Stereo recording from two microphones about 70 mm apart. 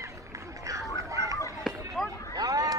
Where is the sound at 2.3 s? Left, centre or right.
Right.